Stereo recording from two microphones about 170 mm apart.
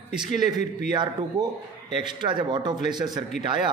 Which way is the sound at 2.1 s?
25° right (ahead or behind).